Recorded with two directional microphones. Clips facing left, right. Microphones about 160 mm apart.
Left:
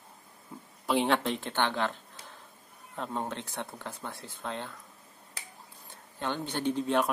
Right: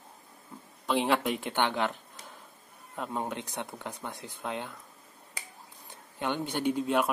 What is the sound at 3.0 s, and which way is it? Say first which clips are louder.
Speech: right 1 dB; 5° right (ahead or behind).